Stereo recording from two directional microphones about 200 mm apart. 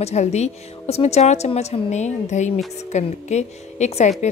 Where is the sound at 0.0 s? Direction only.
35° left (ahead or behind).